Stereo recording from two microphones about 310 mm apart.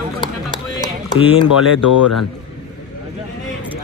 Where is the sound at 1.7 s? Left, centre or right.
Left.